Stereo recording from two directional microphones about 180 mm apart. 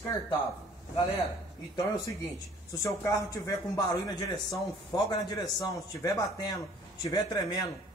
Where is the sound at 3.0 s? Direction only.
15° left (ahead or behind).